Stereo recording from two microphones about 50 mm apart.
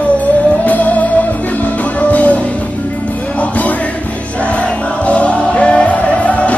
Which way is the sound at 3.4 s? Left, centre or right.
Left.